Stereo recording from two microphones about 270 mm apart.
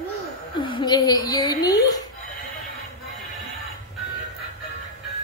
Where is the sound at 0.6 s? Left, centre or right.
Centre.